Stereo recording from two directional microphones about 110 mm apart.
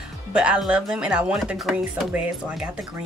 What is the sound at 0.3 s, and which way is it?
Speech, 10° right (ahead or behind).